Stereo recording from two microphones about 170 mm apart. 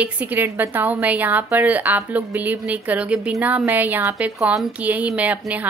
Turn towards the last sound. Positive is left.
turn(degrees=-5)  # may be behind; listen again after turning